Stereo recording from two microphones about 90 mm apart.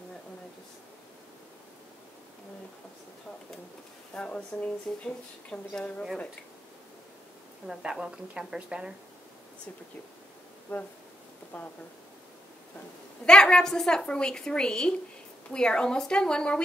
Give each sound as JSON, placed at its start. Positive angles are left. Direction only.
{"t": 4.1, "sound": "speech", "side_deg": 10}
{"t": 7.6, "sound": "speech", "side_deg": -5}
{"t": 10.7, "sound": "speech", "side_deg": 20}
{"t": 13.2, "sound": "speech", "side_deg": 10}